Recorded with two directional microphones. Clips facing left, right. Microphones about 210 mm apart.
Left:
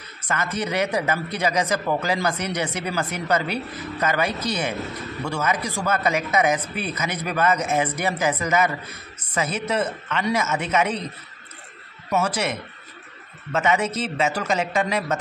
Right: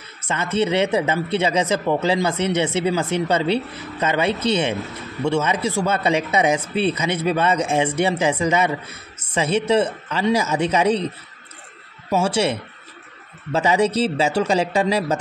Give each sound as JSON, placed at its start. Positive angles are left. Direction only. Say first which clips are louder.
{"t": 0.3, "sound": "speech", "louder": "right 5 dB", "side_deg": -25}
{"t": 12.1, "sound": "speech", "louder": "right 4 dB", "side_deg": -30}